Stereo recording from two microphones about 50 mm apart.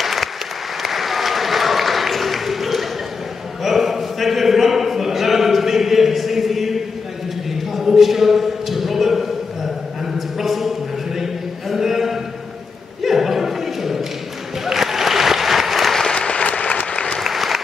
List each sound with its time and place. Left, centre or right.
0.0 s applause: centre
3.6 s choir: centre
7.7 s a sound: centre
14.6 s applause: centre
16.0 s applause: left
17.2 s applause: centre